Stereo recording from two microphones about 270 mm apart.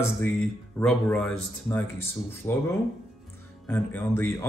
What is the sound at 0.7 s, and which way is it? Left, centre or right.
Speech, centre.